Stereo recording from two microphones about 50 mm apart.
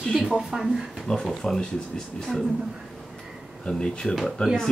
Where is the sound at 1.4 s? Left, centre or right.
Centre.